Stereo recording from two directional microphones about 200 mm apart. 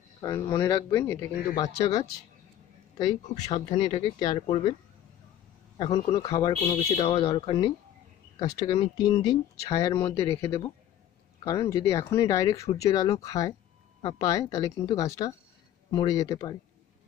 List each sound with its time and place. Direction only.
0.2 s speech: 15° left (ahead or behind)
3.0 s speech: 35° left (ahead or behind)
5.8 s speech: 25° left (ahead or behind)